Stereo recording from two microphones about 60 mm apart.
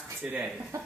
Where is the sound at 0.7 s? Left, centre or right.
Right.